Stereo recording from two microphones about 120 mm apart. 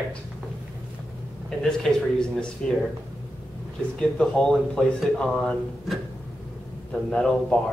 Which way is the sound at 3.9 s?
5° left (ahead or behind).